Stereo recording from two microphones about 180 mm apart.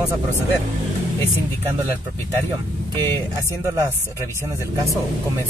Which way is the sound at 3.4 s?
15° right (ahead or behind).